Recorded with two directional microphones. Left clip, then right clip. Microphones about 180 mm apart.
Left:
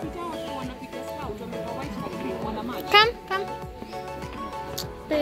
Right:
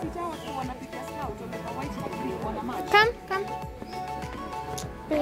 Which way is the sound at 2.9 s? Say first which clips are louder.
Left 3 dB; 20° right (ahead or behind).